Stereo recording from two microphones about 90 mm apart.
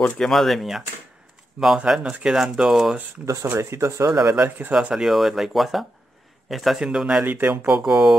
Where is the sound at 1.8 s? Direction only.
10° right (ahead or behind).